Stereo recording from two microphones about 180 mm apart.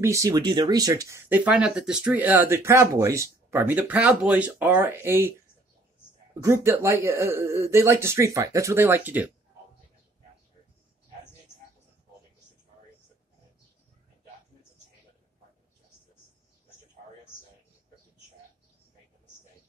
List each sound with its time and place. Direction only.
0.0 s speech: 15° right (ahead or behind)
6.4 s speech: 15° right (ahead or behind)